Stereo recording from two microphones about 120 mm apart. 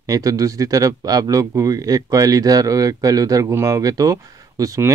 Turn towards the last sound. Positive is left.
turn(degrees=-25)  # may be behind; listen again after turning